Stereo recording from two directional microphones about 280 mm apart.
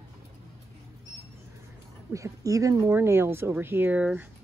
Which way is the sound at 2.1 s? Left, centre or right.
Centre.